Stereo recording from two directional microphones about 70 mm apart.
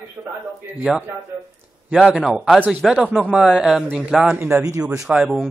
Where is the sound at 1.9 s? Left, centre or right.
Centre.